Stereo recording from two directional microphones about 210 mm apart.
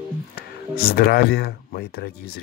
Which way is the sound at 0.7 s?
45° left (ahead or behind).